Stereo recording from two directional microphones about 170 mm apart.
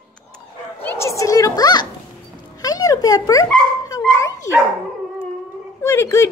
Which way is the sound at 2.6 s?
20° left (ahead or behind).